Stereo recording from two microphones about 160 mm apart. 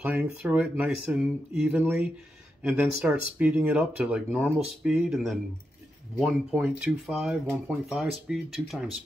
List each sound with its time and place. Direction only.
0.0 s speech: 10° right (ahead or behind)